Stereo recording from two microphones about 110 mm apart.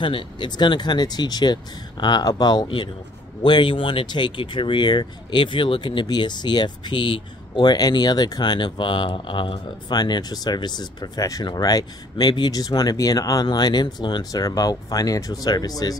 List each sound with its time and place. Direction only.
0.0 s speech: 50° left (ahead or behind)